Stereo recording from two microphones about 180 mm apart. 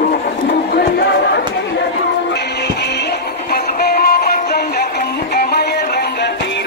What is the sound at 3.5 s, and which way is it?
Music, 60° left (ahead or behind).